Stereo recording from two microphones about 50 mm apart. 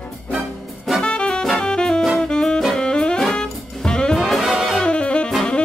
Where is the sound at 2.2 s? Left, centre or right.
Centre.